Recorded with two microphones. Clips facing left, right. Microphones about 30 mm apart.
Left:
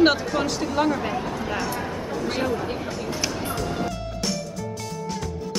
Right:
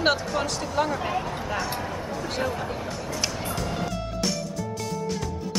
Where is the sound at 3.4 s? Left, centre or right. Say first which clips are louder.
Left 2 dB; centre.